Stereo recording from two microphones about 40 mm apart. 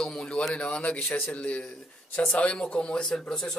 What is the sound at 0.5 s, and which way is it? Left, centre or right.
A man's voice, left.